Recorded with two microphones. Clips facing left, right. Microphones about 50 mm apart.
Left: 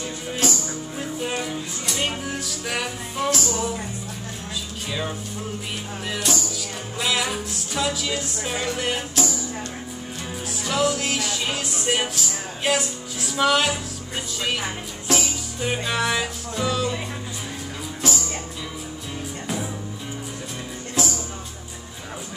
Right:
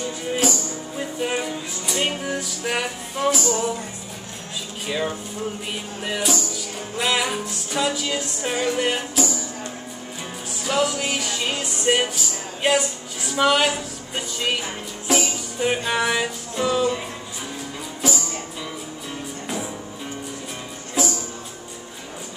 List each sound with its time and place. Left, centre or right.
0.4 s music: centre
1.2 s music: centre
4.8 s speech: centre
7.0 s music: centre
10.6 s music: centre
18.0 s music: centre
19.4 s music: centre
21.0 s music: centre